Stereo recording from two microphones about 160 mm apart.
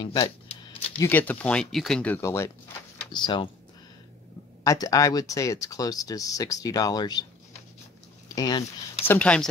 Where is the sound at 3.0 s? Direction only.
30° left (ahead or behind).